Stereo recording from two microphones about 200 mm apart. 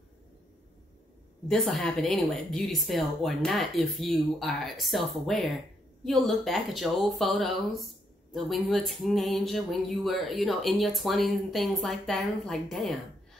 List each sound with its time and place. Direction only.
1.5 s speech: centre (ahead or behind)